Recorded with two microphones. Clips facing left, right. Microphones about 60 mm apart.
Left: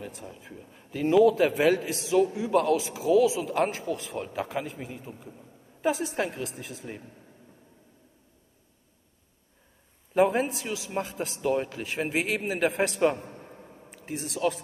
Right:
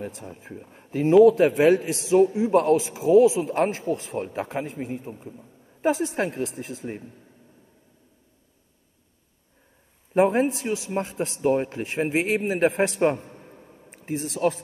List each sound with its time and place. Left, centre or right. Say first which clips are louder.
0.2 s speech: right 4 dB; right
10.1 s a man's voice: right 3 dB; right